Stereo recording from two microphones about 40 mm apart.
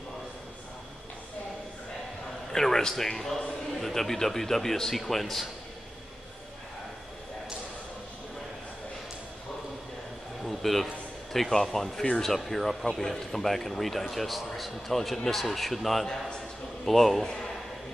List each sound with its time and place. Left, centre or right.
2.5 s a man's voice: centre
10.4 s a sound: centre
11.5 s a man's voice: centre
17.2 s a man's voice: centre